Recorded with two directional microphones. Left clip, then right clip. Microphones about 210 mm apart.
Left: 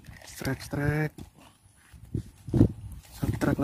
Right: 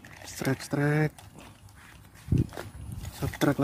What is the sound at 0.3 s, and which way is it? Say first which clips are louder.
Speech: right 3 dB; centre (ahead or behind).